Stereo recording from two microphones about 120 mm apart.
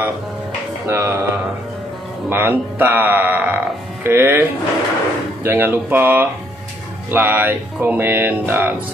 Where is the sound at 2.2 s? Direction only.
15° right (ahead or behind).